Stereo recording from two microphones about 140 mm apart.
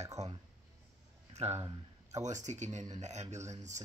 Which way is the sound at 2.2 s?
60° right (ahead or behind).